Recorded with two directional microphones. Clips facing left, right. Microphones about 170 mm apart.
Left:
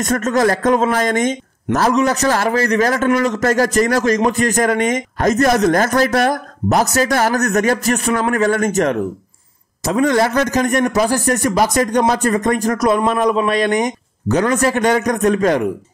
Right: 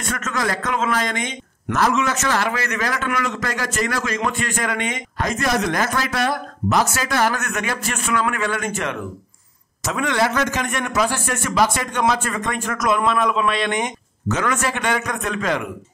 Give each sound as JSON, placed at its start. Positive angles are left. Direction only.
{"t": 0.0, "sound": "a man's voice", "side_deg": 40}